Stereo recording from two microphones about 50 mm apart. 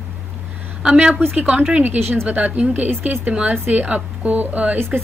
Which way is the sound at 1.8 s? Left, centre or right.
Right.